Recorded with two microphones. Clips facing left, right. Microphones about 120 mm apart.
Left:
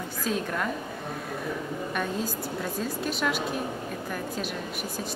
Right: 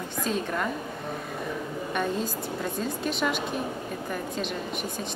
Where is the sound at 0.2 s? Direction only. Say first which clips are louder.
Right 1 dB; centre (ahead or behind).